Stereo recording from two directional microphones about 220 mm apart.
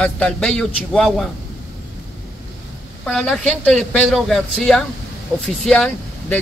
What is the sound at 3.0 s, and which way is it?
Speech, 5° left (ahead or behind).